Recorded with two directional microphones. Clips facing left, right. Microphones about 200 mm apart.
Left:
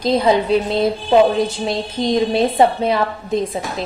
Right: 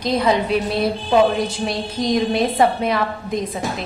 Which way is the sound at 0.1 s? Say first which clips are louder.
Left 3 dB; 30° left (ahead or behind).